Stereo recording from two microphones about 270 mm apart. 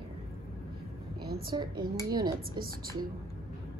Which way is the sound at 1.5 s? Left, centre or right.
Centre.